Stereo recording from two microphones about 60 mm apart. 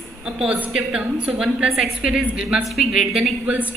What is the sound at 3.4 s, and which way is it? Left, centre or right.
Speech, right.